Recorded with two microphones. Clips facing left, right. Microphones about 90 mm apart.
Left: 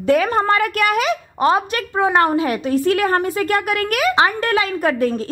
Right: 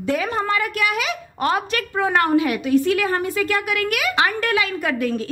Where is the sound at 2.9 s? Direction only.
50° left (ahead or behind).